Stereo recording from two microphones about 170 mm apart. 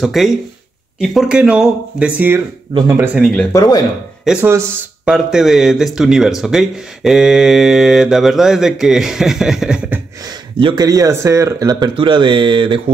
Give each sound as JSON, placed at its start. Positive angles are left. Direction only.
{"t": 0.0, "sound": "speech", "side_deg": 0}
{"t": 3.2, "sound": "speech", "side_deg": 0}
{"t": 3.5, "sound": "speech", "side_deg": 20}
{"t": 4.2, "sound": "speech", "side_deg": -5}
{"t": 10.6, "sound": "speech", "side_deg": -25}